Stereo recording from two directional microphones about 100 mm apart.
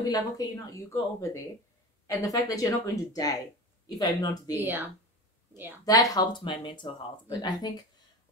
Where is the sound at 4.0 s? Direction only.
40° left (ahead or behind).